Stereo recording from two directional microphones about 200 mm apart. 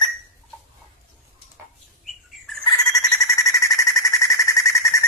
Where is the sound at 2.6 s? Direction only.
20° left (ahead or behind).